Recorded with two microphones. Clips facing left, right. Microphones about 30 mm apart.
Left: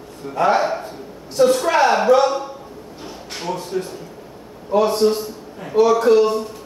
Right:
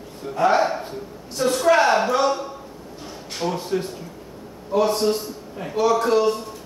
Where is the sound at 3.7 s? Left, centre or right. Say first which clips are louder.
Left 2 dB; right.